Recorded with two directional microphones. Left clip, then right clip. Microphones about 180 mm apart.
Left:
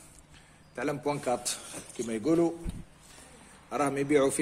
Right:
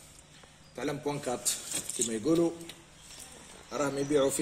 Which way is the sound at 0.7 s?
Centre (ahead or behind).